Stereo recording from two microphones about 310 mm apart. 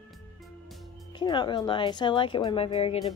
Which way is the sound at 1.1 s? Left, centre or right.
Centre.